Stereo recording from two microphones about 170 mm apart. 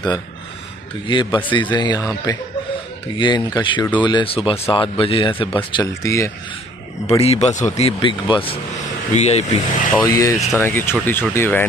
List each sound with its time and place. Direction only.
1.0 s speech: 30° left (ahead or behind)
6.0 s speech: 15° left (ahead or behind)
7.1 s speech: 35° left (ahead or behind)
8.0 s speech: 30° left (ahead or behind)
9.1 s speech: 40° left (ahead or behind)
10.0 s speech: 20° left (ahead or behind)